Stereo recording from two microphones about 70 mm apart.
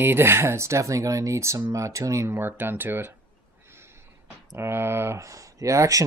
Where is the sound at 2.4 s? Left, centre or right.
Right.